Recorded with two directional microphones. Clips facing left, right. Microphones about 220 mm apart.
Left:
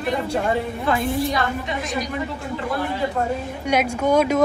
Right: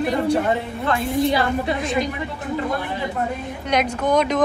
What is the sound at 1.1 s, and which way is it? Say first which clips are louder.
Speech: right 4 dB; 25° right (ahead or behind).